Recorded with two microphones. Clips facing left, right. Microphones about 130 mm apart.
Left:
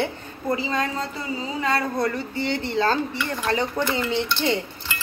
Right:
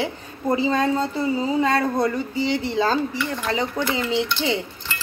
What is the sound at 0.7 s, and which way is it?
Speech, 25° right (ahead or behind).